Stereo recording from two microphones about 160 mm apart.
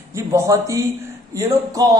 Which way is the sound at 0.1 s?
20° right (ahead or behind).